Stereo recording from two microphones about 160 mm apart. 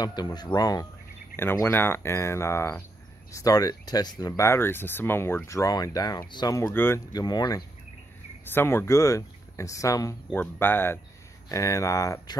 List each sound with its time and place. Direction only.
0.0 s speech: 25° left (ahead or behind)
6.7 s speech: 15° left (ahead or behind)
7.1 s speech: 25° left (ahead or behind)
8.5 s speech: 15° left (ahead or behind)